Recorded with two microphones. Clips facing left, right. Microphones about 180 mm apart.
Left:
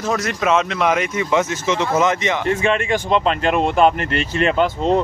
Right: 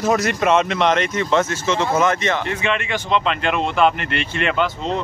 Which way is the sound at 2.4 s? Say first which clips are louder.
Left 4 dB; 40° left (ahead or behind).